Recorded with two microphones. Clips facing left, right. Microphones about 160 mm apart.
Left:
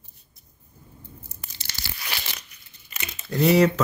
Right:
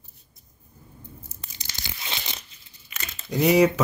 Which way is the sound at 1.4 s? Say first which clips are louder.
Even; 20° right (ahead or behind).